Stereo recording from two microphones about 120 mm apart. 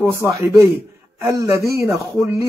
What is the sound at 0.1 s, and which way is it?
Speech, 25° right (ahead or behind).